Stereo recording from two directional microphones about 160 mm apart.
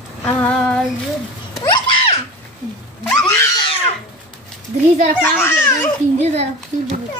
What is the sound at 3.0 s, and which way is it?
Screaming, 15° left (ahead or behind).